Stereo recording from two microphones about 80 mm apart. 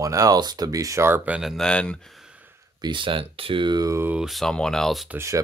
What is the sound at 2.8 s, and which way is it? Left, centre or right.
Speech, right.